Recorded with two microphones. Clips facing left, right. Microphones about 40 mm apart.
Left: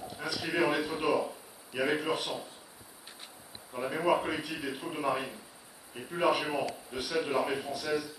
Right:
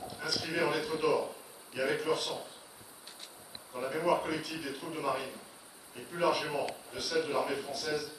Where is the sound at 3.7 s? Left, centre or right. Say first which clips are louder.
Left 2 dB; centre.